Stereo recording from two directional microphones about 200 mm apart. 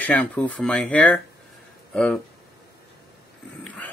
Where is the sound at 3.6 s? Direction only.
5° left (ahead or behind).